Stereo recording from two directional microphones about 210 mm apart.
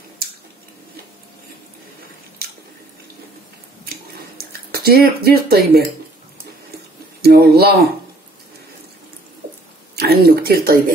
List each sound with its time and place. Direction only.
4.4 s speech: 45° right (ahead or behind)
7.2 s speech: 50° right (ahead or behind)
9.9 s speech: 50° right (ahead or behind)